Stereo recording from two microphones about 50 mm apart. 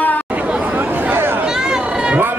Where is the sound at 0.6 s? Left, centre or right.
Right.